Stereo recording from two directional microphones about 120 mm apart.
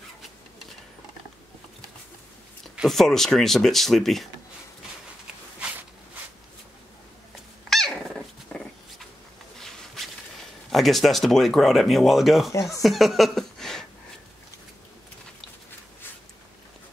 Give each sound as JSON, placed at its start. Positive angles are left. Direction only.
{"t": 2.7, "sound": "speech", "side_deg": 0}
{"t": 7.7, "sound": "dog", "side_deg": 5}
{"t": 9.6, "sound": "a sound", "side_deg": 5}
{"t": 10.7, "sound": "speech", "side_deg": 0}
{"t": 12.5, "sound": "speech", "side_deg": 25}
{"t": 12.8, "sound": "speech", "side_deg": 0}